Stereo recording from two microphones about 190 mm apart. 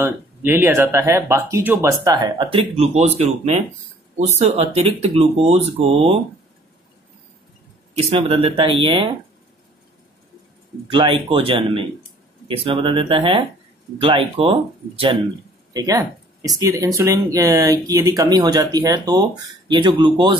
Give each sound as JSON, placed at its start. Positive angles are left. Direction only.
{"t": 0.0, "sound": "speech", "side_deg": -10}
{"t": 7.9, "sound": "speech", "side_deg": -35}
{"t": 10.9, "sound": "speech", "side_deg": -25}